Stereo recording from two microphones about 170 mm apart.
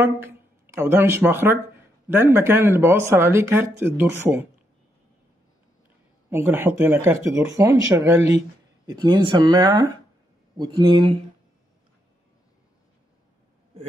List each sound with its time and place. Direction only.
0.0 s speech: 15° right (ahead or behind)
6.3 s speech: 15° right (ahead or behind)
8.8 s speech: 25° right (ahead or behind)